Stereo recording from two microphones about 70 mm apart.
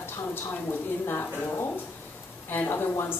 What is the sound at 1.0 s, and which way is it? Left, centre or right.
A woman's voice, left.